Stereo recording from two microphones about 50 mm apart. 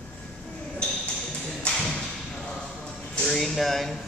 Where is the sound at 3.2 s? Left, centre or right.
Centre.